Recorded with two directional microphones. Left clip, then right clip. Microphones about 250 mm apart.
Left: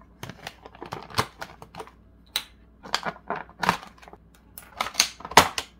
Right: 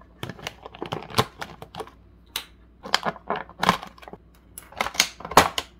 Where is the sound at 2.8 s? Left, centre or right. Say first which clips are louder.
Right 4 dB; centre.